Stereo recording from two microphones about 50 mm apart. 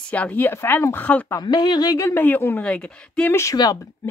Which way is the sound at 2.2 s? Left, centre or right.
Left.